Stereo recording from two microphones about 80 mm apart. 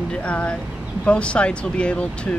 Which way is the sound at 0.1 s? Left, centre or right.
Centre.